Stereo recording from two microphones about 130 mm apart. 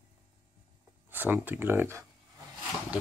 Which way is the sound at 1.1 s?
15° right (ahead or behind).